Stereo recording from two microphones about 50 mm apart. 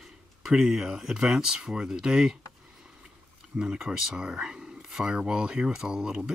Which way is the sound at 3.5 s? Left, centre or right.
Centre.